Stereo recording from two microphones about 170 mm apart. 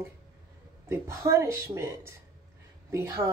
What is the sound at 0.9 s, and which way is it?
Speech, 15° right (ahead or behind).